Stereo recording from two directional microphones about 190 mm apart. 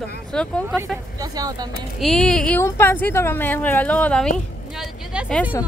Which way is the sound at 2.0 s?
Centre (ahead or behind).